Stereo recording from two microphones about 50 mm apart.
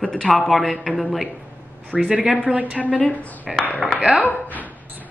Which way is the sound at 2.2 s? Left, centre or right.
Right.